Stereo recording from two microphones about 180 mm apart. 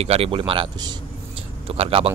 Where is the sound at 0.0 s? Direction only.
35° right (ahead or behind).